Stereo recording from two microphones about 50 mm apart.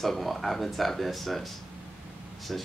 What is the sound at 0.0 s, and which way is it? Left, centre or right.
Speech, centre.